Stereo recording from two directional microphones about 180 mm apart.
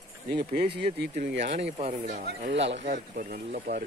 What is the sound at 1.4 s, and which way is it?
Speech, 35° right (ahead or behind).